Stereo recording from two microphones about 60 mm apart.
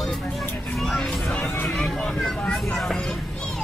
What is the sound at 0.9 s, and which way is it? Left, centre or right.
Music, centre.